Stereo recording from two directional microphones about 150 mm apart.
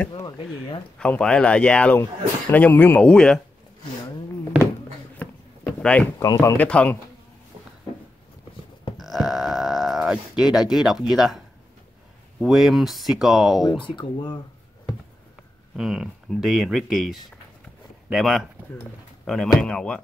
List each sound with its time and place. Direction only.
0.9 s a man's voice: 5° left (ahead or behind)
5.2 s a sound: 10° left (ahead or behind)
6.1 s speech: 20° left (ahead or behind)
6.6 s a man's voice: 10° left (ahead or behind)
8.9 s speech: centre (ahead or behind)
13.8 s speech: 30° left (ahead or behind)
15.7 s speech: 5° right (ahead or behind)